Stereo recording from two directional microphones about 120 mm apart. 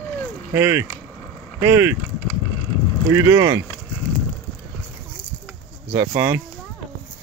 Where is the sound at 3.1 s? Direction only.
25° right (ahead or behind).